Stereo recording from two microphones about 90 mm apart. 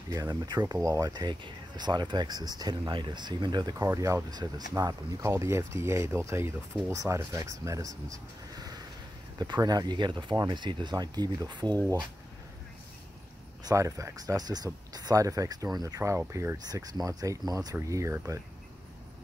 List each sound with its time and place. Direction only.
0.1 s speech: 45° right (ahead or behind)
3.7 s speech: 35° right (ahead or behind)
4.3 s speech: 50° right (ahead or behind)
13.7 s speech: 35° right (ahead or behind)
16.0 s speech: 30° right (ahead or behind)